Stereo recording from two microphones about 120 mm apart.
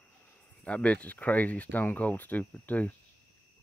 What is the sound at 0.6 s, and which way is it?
Speech, 10° left (ahead or behind).